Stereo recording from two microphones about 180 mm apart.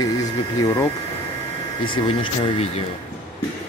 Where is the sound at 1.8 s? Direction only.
30° left (ahead or behind).